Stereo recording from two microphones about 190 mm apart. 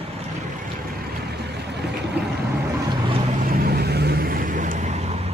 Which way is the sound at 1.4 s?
60° right (ahead or behind).